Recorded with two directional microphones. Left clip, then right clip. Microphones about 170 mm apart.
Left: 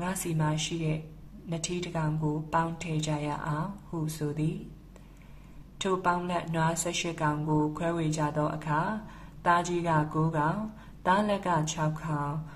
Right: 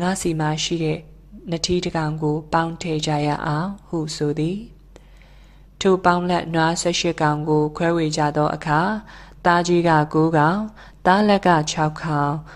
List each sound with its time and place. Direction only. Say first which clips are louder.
0.0 s a woman's voice: right 10 dB; 40° right (ahead or behind)
5.8 s a woman's voice: right 11 dB; 35° right (ahead or behind)